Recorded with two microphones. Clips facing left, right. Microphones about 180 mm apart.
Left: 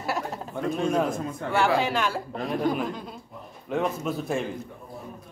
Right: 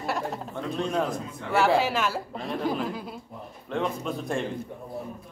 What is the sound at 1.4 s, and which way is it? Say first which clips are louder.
Speech: even; 45° left (ahead or behind).